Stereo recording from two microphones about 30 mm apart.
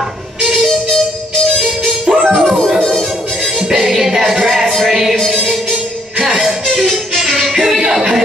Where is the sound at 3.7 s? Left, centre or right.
Centre.